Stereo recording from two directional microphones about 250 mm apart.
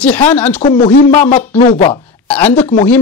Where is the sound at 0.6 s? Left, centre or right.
Left.